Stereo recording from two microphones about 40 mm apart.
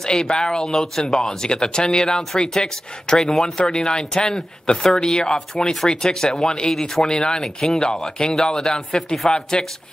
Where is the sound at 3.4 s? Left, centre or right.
Left.